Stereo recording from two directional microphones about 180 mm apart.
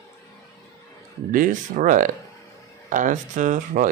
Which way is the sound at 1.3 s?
50° right (ahead or behind).